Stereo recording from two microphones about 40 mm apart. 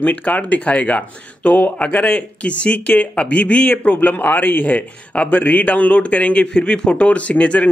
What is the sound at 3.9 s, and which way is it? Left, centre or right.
Speech, left.